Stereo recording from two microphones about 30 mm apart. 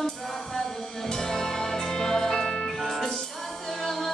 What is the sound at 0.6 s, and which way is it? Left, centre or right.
Music, left.